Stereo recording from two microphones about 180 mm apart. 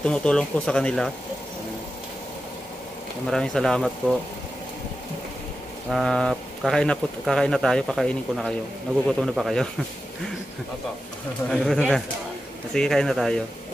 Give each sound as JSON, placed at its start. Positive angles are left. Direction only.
{"t": 0.0, "sound": "speech", "side_deg": 5}
{"t": 3.3, "sound": "speech", "side_deg": 5}
{"t": 5.9, "sound": "speech", "side_deg": 0}
{"t": 11.4, "sound": "speech", "side_deg": 5}